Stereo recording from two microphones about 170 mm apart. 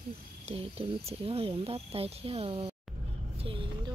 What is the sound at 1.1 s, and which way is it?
Speech, 35° right (ahead or behind).